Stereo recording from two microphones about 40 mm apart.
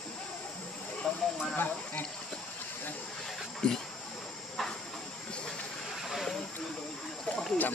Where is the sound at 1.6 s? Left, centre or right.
Left.